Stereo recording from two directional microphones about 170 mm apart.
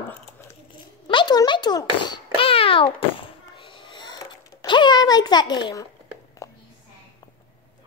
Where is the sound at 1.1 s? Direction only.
25° left (ahead or behind).